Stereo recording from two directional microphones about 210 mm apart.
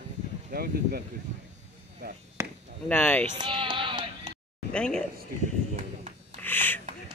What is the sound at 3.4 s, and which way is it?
Music, 25° right (ahead or behind).